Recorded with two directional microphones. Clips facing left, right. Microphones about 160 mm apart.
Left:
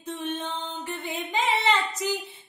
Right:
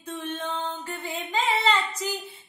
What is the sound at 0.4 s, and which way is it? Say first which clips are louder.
Chant: right 3 dB; 90° right.